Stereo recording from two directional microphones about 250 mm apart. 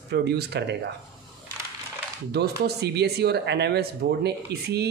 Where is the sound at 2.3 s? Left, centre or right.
Right.